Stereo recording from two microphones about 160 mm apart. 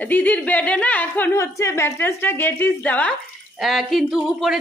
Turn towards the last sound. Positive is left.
turn(degrees=-5)  # may be behind; listen again after turning